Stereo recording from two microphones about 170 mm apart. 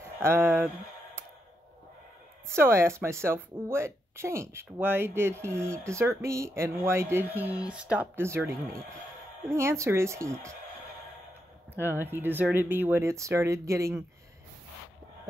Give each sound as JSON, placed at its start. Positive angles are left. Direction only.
{"t": 0.2, "sound": "speech", "side_deg": -15}
{"t": 2.5, "sound": "speech", "side_deg": -15}
{"t": 9.5, "sound": "speech", "side_deg": -15}
{"t": 11.7, "sound": "speech", "side_deg": -15}